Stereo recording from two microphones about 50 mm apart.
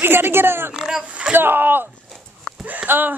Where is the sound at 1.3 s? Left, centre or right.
Right.